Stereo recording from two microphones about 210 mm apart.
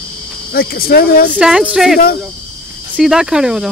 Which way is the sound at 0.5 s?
45° left (ahead or behind).